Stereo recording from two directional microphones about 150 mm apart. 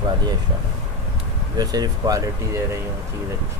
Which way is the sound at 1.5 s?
25° right (ahead or behind).